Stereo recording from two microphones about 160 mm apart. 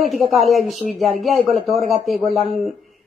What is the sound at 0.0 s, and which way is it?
Speech, centre (ahead or behind).